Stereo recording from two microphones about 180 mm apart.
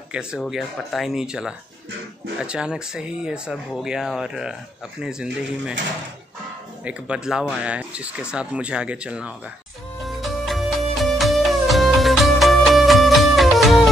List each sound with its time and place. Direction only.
0.1 s speech: 5° right (ahead or behind)
6.8 s speech: 5° right (ahead or behind)
10.0 s music: centre (ahead or behind)